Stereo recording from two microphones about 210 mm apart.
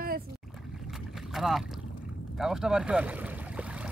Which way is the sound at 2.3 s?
Centre (ahead or behind).